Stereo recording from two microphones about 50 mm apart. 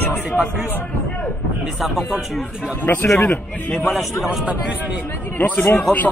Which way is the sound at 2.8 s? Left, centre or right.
Left.